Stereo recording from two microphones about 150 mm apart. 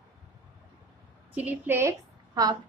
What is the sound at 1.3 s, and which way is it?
A woman's voice, 10° right (ahead or behind).